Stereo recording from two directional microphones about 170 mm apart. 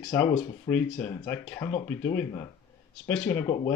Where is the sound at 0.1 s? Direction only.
15° left (ahead or behind).